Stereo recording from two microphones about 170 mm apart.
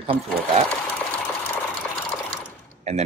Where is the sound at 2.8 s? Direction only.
40° right (ahead or behind).